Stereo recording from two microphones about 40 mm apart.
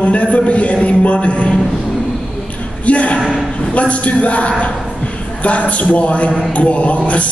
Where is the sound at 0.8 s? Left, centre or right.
Left.